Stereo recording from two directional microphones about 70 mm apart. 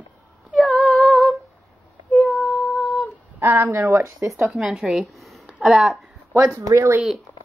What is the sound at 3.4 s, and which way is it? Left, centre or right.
Speech, right.